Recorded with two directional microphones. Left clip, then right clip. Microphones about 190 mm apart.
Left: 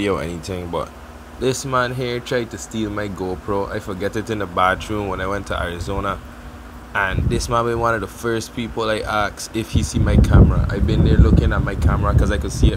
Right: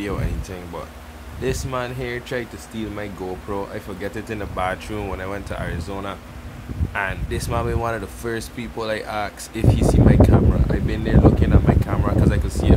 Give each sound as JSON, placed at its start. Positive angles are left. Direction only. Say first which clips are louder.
{"t": 0.0, "sound": "speech", "louder": "left 7 dB", "side_deg": 30}
{"t": 1.4, "sound": "speech", "louder": "left 6 dB", "side_deg": 20}